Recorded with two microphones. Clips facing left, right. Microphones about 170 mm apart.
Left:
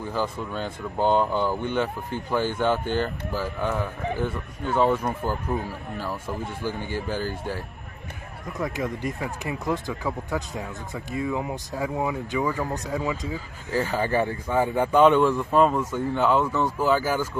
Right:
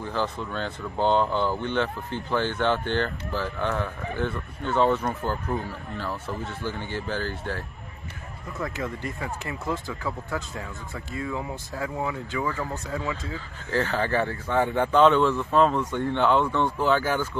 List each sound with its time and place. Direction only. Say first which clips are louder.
0.0 s speech: left 1 dB; 10° left (ahead or behind)